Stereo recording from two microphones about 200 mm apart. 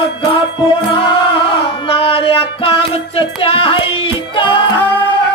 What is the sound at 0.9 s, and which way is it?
Music, 25° left (ahead or behind).